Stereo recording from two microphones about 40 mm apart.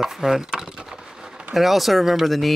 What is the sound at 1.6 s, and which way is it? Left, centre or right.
Speech, centre.